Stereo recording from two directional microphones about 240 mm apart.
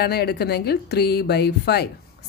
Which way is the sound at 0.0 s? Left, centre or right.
Left.